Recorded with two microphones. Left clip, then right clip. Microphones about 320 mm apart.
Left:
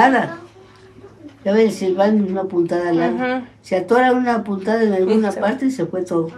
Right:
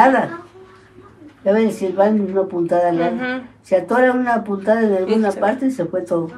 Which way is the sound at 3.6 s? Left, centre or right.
Centre.